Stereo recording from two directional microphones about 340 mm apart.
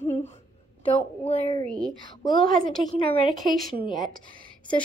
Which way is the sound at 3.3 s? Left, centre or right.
Right.